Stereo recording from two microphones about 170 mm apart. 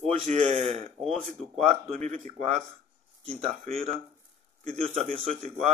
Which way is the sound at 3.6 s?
40° right (ahead or behind).